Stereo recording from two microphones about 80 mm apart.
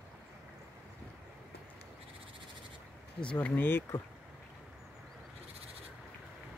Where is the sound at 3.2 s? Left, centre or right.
Centre.